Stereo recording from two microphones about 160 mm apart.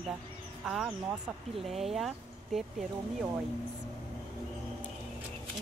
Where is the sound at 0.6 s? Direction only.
5° right (ahead or behind).